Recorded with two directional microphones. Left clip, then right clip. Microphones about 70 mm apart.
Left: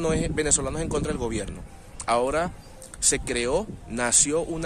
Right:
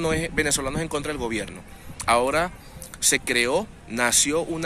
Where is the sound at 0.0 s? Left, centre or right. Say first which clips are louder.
Right 2 dB; left.